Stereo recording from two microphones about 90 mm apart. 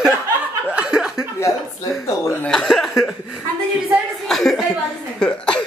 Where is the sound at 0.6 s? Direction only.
10° right (ahead or behind).